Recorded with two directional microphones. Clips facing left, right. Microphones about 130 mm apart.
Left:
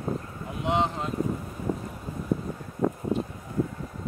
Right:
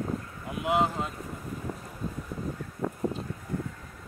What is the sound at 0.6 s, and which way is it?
Speech, 5° right (ahead or behind).